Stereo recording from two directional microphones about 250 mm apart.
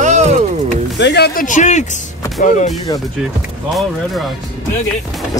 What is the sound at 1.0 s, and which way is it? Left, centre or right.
Speech, left.